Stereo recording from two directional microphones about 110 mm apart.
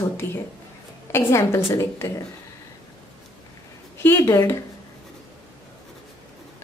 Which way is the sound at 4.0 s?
20° left (ahead or behind).